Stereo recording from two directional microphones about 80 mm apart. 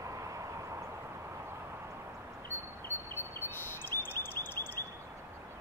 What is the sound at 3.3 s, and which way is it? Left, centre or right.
Bird, left.